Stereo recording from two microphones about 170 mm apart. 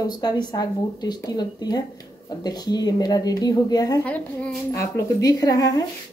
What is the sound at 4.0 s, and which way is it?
A woman's voice, 10° left (ahead or behind).